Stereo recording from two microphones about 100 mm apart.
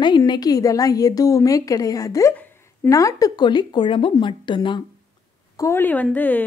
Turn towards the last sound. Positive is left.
turn(degrees=15)  # may be behind; listen again after turning